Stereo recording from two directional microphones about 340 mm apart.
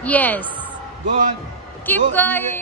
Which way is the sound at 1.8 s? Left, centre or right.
Centre.